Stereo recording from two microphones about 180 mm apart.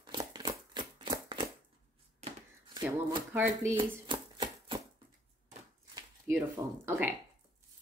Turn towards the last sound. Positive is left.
turn(degrees=-10)  # may be behind; listen again after turning